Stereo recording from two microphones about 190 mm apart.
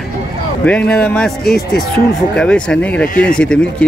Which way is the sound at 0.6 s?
5° left (ahead or behind).